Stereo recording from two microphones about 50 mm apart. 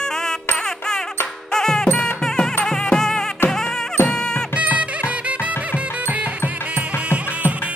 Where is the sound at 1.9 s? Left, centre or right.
Left.